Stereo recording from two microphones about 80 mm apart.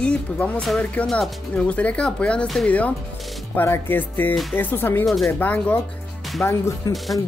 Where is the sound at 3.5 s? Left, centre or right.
Left.